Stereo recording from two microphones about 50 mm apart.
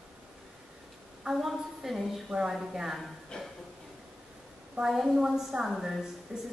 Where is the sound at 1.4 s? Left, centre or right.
Centre.